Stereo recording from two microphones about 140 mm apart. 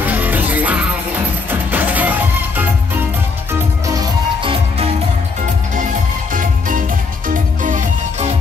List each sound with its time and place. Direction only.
0.0 s music: 10° right (ahead or behind)
4.4 s music: 40° right (ahead or behind)
7.2 s music: 70° right (ahead or behind)